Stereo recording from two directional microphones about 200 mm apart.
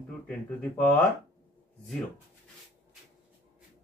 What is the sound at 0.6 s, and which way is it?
Speech, 5° left (ahead or behind).